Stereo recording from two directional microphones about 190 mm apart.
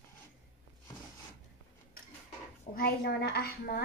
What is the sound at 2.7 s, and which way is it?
A woman's voice, 55° left (ahead or behind).